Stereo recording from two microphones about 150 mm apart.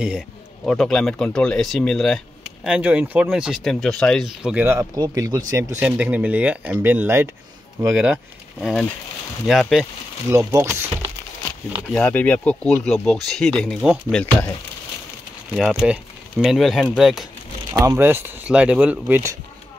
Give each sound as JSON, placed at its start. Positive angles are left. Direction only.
{"t": 0.7, "sound": "speech", "side_deg": 5}
{"t": 10.3, "sound": "speech", "side_deg": -20}
{"t": 11.9, "sound": "speech", "side_deg": 10}
{"t": 15.5, "sound": "speech", "side_deg": 0}
{"t": 17.7, "sound": "speech", "side_deg": -20}